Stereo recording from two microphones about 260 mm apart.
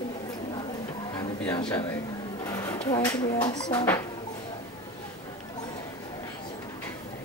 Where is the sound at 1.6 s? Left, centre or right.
Centre.